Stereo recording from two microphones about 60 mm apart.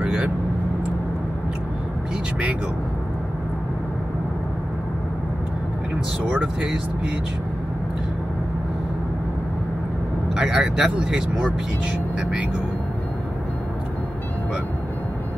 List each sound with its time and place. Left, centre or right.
0.0 s vehicle: centre
10.3 s speech: centre